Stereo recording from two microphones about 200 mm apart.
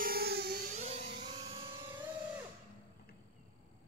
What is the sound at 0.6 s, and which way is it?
Music, 35° right (ahead or behind).